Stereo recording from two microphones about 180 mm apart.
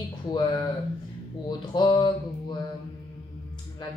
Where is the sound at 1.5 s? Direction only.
25° left (ahead or behind).